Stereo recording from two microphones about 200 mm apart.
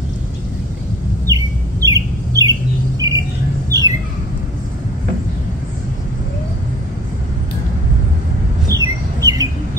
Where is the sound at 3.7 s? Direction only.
15° right (ahead or behind).